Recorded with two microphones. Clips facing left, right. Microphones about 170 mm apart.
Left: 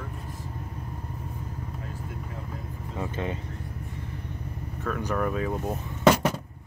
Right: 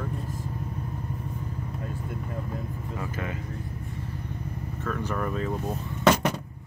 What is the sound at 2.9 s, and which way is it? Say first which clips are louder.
Vehicle: left 4 dB; 25° left (ahead or behind).